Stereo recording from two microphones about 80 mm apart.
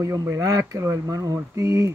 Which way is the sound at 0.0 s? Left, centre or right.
Right.